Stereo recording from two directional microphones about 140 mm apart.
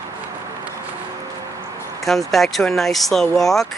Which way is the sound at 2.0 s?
Centre (ahead or behind).